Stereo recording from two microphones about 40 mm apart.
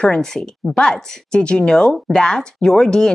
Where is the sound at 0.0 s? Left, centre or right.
Centre.